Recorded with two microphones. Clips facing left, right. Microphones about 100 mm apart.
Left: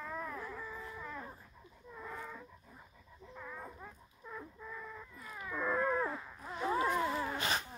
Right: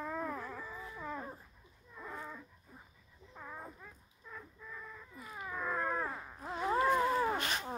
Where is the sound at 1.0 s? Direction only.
30° right (ahead or behind).